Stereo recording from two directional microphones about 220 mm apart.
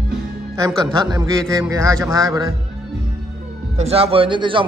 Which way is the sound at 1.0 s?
20° right (ahead or behind).